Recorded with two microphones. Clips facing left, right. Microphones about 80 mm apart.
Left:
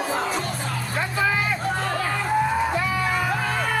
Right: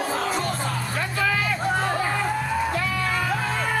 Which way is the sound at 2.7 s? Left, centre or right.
Centre.